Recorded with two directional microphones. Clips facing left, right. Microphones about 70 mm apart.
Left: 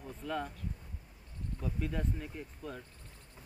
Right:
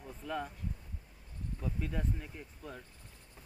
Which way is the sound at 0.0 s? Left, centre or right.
Centre.